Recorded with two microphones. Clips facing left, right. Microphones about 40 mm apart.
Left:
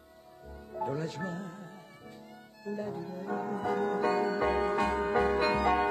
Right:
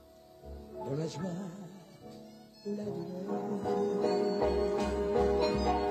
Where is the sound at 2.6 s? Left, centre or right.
Left.